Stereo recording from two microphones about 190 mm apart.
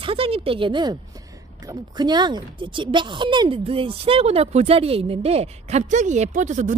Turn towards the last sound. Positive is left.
turn(degrees=-40)  # may be behind; listen again after turning